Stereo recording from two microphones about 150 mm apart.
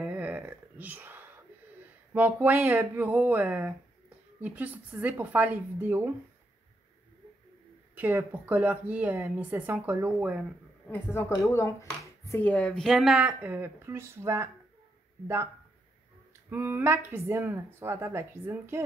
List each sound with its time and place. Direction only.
0.0 s a sound: 10° right (ahead or behind)
2.1 s a woman's voice: 10° right (ahead or behind)
7.9 s a woman's voice: 10° right (ahead or behind)
10.9 s a woman's voice: 15° left (ahead or behind); by 13.5 s 5° right (ahead or behind)
13.5 s a woman's voice: 15° right (ahead or behind)
16.4 s a woman's voice: 15° right (ahead or behind)